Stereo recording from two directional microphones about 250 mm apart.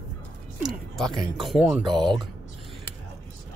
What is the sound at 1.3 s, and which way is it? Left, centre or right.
Speech, centre.